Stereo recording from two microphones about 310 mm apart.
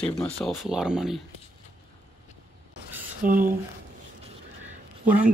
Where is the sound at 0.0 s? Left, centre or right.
Centre.